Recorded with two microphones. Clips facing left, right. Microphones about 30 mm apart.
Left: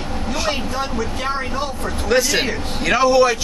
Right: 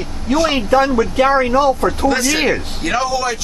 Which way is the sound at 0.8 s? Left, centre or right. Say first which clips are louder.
Right 10 dB; right.